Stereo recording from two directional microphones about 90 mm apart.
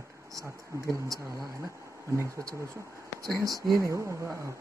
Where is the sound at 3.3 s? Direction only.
40° right (ahead or behind).